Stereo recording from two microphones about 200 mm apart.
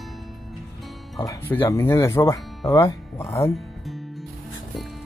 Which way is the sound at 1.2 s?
15° left (ahead or behind).